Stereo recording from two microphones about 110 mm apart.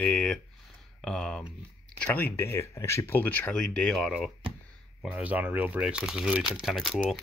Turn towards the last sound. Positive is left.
turn(degrees=0)  # may be behind; listen again after turning